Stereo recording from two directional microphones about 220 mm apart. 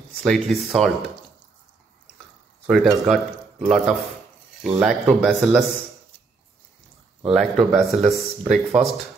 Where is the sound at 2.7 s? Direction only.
Centre (ahead or behind).